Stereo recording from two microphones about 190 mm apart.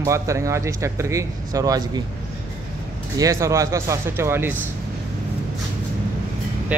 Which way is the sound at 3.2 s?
15° right (ahead or behind).